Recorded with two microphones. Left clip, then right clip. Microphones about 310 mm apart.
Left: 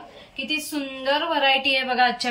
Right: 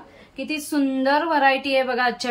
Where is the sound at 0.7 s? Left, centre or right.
Centre.